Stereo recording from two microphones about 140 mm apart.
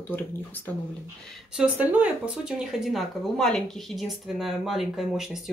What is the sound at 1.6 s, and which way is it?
Speech, 10° right (ahead or behind).